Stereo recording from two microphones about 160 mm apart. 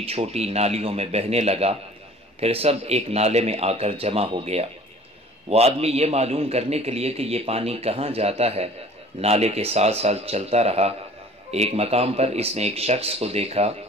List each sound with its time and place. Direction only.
0.0 s a man's voice: 40° right (ahead or behind)